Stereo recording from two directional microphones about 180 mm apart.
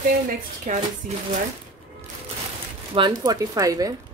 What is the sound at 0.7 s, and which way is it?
Speech, 40° right (ahead or behind).